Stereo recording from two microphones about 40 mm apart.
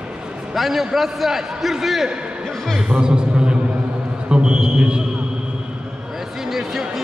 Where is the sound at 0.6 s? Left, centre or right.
Centre.